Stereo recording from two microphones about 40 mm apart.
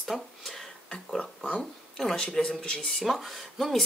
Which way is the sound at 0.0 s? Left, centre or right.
Centre.